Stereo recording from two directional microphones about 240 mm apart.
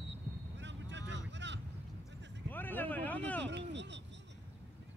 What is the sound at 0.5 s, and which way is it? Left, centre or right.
Vehicle, right.